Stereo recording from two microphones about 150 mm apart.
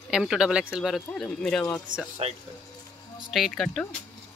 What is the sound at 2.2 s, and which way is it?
Speech, 45° right (ahead or behind).